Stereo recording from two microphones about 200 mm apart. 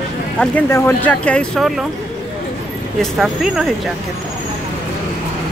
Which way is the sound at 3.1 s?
Centre (ahead or behind).